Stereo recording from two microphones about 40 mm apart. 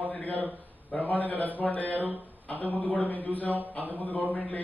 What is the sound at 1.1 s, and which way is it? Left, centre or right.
A man's voice, left.